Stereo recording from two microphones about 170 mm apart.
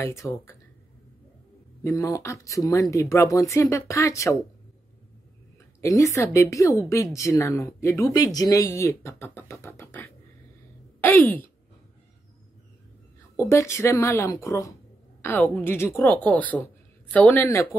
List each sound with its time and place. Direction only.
0.0 s speech: 15° left (ahead or behind)
1.8 s speech: 15° left (ahead or behind)
5.8 s a woman's voice: 20° left (ahead or behind)
13.4 s speech: 15° left (ahead or behind)